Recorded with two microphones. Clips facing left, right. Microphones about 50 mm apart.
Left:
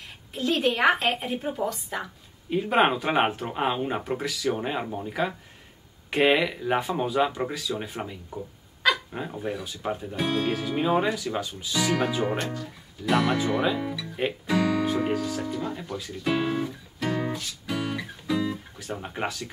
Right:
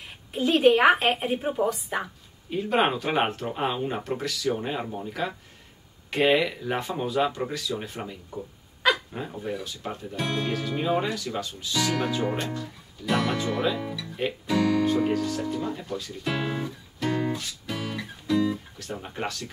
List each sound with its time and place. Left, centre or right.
0.3 s a woman's voice: centre
2.5 s speech: centre
17.8 s music: centre
19.0 s speech: centre